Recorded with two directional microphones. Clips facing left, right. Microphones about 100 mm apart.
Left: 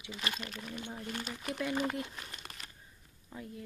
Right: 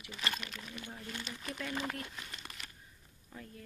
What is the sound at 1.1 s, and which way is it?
Speech, 55° left (ahead or behind).